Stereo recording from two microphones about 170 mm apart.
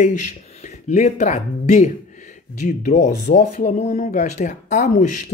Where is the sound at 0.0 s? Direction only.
45° left (ahead or behind).